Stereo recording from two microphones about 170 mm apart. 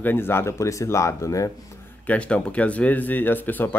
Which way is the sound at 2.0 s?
5° left (ahead or behind).